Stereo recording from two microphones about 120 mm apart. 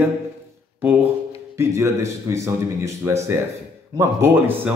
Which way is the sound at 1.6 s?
25° right (ahead or behind).